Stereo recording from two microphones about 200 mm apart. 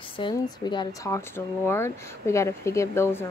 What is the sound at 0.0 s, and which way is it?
A woman's voice, 25° left (ahead or behind).